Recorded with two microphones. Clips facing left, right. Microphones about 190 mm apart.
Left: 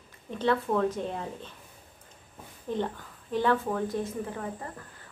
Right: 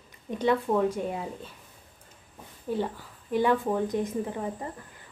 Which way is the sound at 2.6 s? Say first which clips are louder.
Right 1 dB; 5° right (ahead or behind).